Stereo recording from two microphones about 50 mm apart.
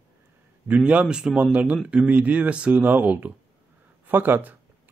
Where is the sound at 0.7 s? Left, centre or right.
Right.